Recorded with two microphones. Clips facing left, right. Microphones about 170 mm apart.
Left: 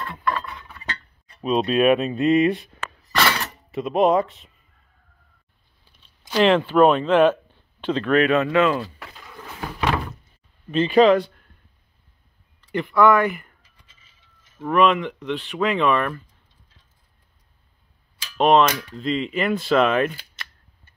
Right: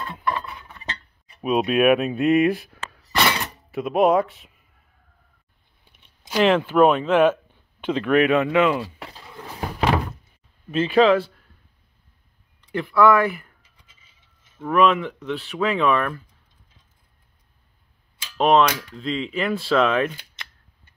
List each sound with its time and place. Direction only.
0.0 s a sound: 20° right (ahead or behind)
1.4 s speech: 10° right (ahead or behind)
3.2 s breaking: 15° right (ahead or behind)
3.7 s speech: centre (ahead or behind)
6.2 s speech: 5° right (ahead or behind)
9.0 s door: 30° right (ahead or behind)
10.7 s speech: 5° right (ahead or behind)
12.7 s speech: centre (ahead or behind)
14.6 s speech: 5° right (ahead or behind)
18.4 s speech: centre (ahead or behind)
20.2 s cap gun: 20° right (ahead or behind)